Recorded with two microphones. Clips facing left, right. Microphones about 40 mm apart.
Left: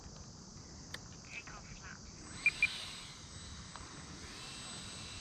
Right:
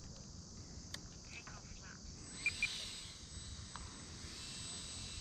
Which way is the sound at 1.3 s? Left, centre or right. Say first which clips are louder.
Left 5 dB; left.